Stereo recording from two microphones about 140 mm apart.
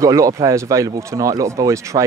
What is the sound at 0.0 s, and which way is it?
Speech, 25° right (ahead or behind).